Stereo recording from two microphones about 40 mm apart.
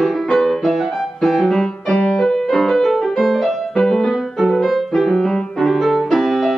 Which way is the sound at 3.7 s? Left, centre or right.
Centre.